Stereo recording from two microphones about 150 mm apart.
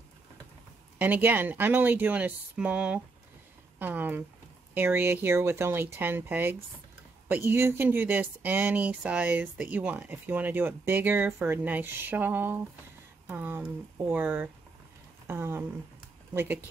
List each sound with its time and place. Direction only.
0.9 s speech: 10° right (ahead or behind)